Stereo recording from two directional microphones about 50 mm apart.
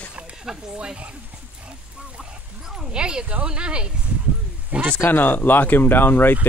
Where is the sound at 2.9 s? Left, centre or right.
Centre.